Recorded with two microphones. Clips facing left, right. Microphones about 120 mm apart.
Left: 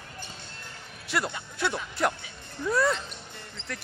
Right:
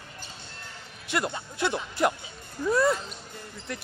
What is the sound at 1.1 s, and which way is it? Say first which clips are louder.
A man's voice: right 1 dB; centre (ahead or behind).